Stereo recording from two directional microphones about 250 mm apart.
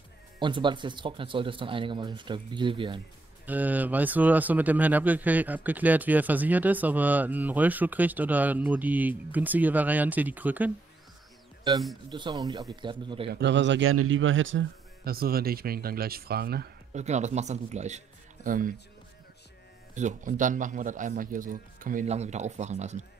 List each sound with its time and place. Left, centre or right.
0.4 s speech: centre
3.4 s speech: centre
12.1 s speech: centre
13.3 s a man's voice: right
17.0 s speech: right
19.9 s a man's voice: right